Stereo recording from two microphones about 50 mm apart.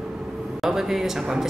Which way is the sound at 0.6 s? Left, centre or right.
Centre.